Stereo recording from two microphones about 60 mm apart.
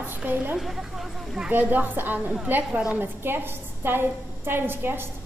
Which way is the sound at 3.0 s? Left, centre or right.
Right.